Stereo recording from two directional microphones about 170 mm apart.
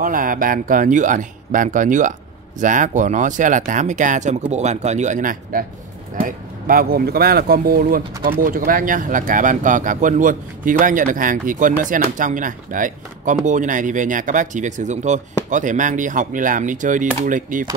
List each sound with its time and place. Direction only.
0.0 s speech: 55° right (ahead or behind)